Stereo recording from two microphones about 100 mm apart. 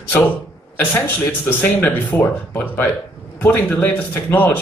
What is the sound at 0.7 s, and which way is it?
Speech, 20° left (ahead or behind).